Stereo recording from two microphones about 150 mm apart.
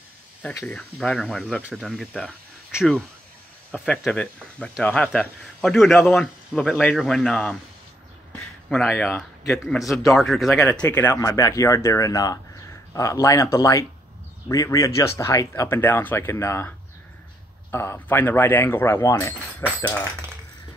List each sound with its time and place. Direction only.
0.4 s speech: 10° left (ahead or behind)
1.6 s speech: 10° right (ahead or behind)
1.9 s speech: centre (ahead or behind)
8.6 s speech: centre (ahead or behind); by 19.3 s 20° left (ahead or behind)